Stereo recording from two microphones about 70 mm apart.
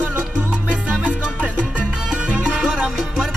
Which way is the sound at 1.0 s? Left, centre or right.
Centre.